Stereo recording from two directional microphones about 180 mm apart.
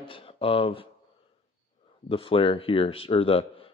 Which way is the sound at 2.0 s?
30° left (ahead or behind).